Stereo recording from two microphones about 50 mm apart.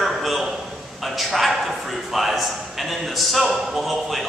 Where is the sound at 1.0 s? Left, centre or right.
Centre.